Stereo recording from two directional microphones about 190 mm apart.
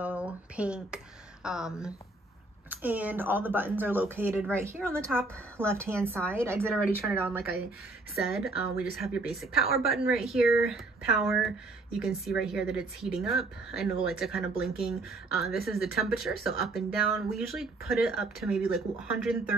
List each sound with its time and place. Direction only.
0.0 s a sound: 5° right (ahead or behind)
2.7 s a woman's voice: 10° right (ahead or behind)
4.8 s speech: 5° left (ahead or behind)
5.9 s a woman's voice: 15° right (ahead or behind)
6.6 s speech: centre (ahead or behind)
7.2 s a woman's voice: 10° right (ahead or behind)